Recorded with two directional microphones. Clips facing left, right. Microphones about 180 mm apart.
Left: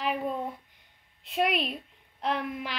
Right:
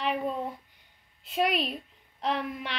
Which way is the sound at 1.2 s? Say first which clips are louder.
Even; centre (ahead or behind).